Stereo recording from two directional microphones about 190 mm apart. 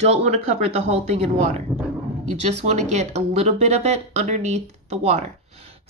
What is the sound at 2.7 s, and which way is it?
Speech, 35° right (ahead or behind).